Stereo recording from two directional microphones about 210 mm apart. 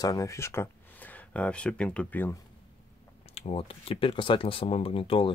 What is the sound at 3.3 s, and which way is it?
Speech, 30° left (ahead or behind).